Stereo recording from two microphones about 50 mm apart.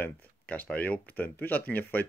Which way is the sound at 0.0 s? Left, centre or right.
Left.